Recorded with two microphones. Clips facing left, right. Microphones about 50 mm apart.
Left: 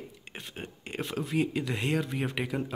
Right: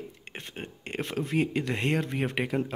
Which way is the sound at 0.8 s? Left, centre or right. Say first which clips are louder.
Right 2 dB; right.